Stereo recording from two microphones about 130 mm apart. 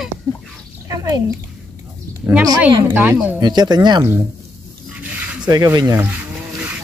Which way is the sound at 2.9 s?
15° right (ahead or behind).